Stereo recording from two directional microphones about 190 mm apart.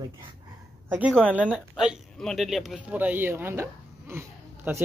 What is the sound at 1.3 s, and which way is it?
Speech, 5° right (ahead or behind).